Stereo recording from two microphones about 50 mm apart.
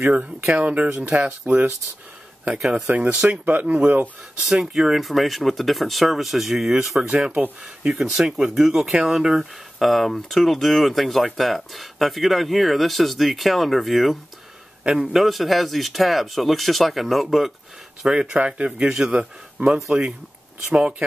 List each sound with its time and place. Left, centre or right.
0.4 s speech: right
2.7 s speech: right
4.6 s speech: centre
5.0 s speech: centre
14.8 s a man's voice: centre
15.1 s speech: centre
18.1 s speech: right
18.8 s speech: centre